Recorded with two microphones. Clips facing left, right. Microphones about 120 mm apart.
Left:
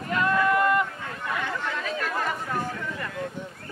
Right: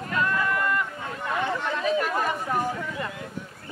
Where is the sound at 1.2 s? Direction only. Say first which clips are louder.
Right 3 dB; 20° right (ahead or behind).